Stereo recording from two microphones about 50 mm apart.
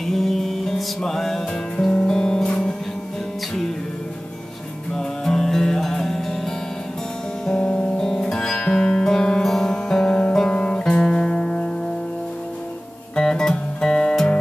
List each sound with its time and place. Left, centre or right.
0.0 s music: centre
4.9 s music: centre
7.4 s music: centre
13.1 s music: centre